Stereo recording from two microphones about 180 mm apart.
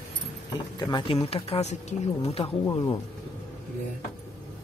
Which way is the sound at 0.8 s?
25° left (ahead or behind).